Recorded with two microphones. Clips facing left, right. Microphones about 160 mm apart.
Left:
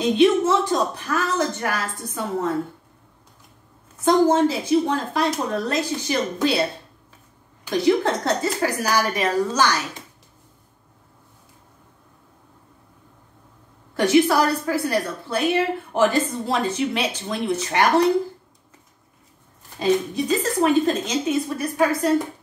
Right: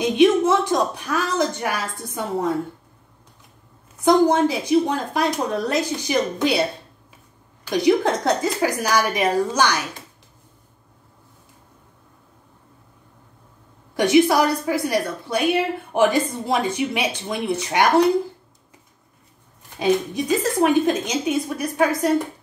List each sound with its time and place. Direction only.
0.0 s a woman's voice: 15° right (ahead or behind)
4.0 s a woman's voice: 15° right (ahead or behind)
7.7 s a woman's voice: 15° right (ahead or behind)
13.9 s a woman's voice: 15° right (ahead or behind)
19.8 s a woman's voice: 15° right (ahead or behind)